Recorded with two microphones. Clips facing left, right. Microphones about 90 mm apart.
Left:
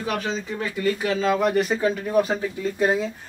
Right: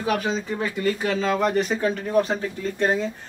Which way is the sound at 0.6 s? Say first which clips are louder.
Left 1 dB; 30° right (ahead or behind).